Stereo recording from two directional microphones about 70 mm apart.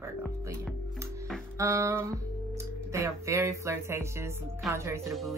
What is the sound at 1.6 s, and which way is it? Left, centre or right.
Speech, right.